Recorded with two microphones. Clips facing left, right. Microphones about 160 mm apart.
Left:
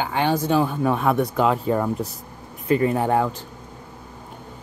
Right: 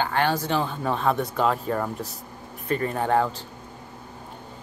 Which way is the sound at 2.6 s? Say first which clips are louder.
Left 6 dB; 15° left (ahead or behind).